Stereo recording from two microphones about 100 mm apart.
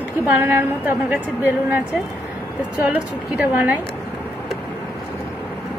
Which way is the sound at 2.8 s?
15° right (ahead or behind).